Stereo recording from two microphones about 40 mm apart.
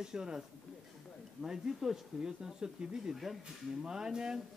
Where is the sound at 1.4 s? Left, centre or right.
Centre.